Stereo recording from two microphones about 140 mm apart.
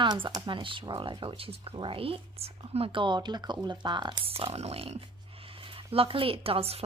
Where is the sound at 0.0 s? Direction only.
30° right (ahead or behind).